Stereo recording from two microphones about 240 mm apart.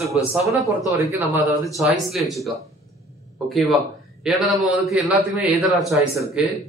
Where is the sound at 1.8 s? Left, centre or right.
Centre.